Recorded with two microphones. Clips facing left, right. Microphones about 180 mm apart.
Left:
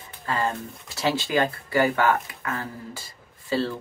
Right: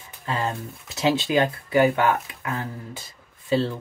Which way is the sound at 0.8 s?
20° right (ahead or behind).